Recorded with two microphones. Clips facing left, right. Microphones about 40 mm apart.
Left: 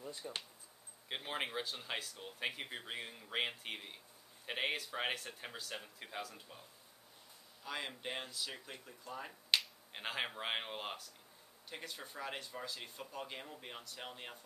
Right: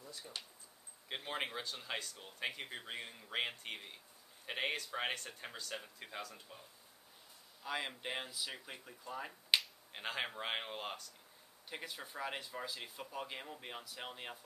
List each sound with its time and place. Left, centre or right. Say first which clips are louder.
0.0 s speech: left 4 dB; left
1.0 s speech: even; centre
7.6 s speech: right 2 dB; centre
9.9 s speech: even; centre
11.7 s speech: right 1 dB; centre